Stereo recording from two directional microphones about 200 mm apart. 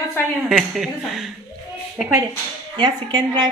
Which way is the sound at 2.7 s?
20° right (ahead or behind).